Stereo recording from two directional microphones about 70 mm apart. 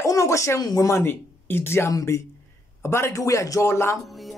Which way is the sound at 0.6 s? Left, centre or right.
Left.